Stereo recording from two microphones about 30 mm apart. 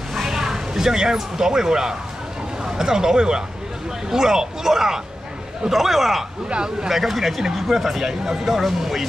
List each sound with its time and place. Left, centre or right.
0.3 s speech: centre
5.7 s speech: centre
6.5 s speech: right
6.9 s speech: centre